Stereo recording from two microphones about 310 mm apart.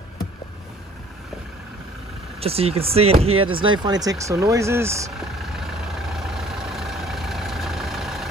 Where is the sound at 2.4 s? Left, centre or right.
Centre.